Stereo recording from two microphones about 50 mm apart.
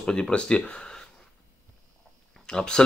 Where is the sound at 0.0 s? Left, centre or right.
Centre.